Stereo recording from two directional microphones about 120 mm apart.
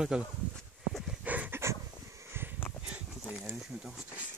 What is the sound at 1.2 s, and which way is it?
Pant, 15° right (ahead or behind).